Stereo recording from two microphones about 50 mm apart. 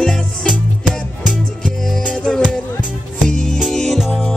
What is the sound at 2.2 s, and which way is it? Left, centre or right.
Music, centre.